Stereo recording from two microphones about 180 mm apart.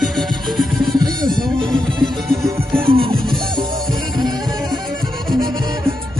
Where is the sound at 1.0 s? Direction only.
25° right (ahead or behind).